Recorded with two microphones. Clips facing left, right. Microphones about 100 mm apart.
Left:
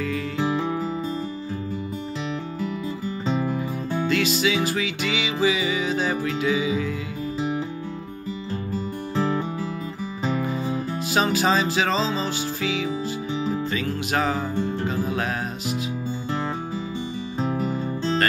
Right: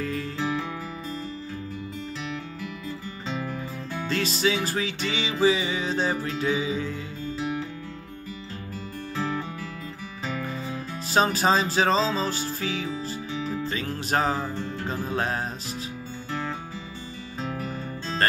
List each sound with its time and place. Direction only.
0.4 s music: 20° left (ahead or behind)
3.4 s music: 15° left (ahead or behind)
4.1 s music: 35° right (ahead or behind)
10.5 s music: 15° left (ahead or behind)
11.1 s music: 35° right (ahead or behind)
12.0 s music: centre (ahead or behind)
13.3 s music: 10° left (ahead or behind)
13.7 s music: 35° right (ahead or behind)
14.5 s music: 15° left (ahead or behind)
14.9 s music: 35° right (ahead or behind)
17.4 s music: 10° left (ahead or behind)